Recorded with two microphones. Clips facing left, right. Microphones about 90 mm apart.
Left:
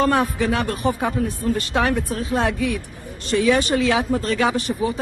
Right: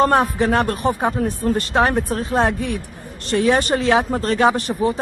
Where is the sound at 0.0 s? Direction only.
40° right (ahead or behind).